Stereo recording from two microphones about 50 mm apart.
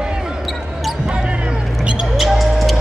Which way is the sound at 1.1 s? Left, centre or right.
Centre.